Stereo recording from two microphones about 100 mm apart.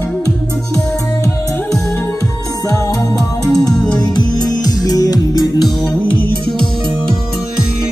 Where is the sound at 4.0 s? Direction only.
45° left (ahead or behind).